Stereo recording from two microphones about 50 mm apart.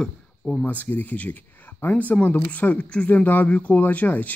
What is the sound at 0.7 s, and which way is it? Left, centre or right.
Speech, left.